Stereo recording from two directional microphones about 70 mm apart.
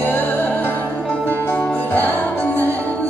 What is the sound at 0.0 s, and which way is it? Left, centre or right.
Music, left.